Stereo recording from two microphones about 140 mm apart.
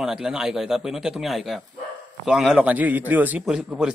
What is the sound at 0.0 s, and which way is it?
A man's voice, 5° right (ahead or behind).